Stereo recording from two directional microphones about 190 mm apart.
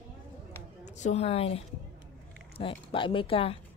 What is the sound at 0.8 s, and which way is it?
Speech, 40° left (ahead or behind).